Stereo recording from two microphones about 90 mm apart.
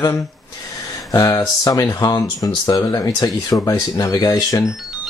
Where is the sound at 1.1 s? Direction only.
40° left (ahead or behind).